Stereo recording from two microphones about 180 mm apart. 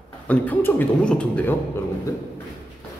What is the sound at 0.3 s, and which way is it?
A man's voice, 10° left (ahead or behind).